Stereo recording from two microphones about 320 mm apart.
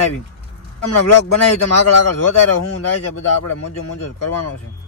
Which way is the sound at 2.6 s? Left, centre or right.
Left.